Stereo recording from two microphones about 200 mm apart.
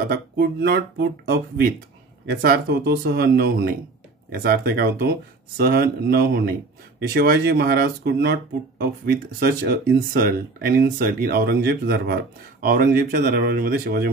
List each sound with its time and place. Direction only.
0.0 s speech: 50° right (ahead or behind)